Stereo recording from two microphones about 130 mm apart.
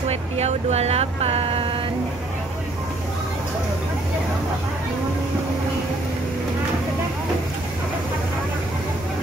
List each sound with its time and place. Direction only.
0.1 s speech: 55° right (ahead or behind)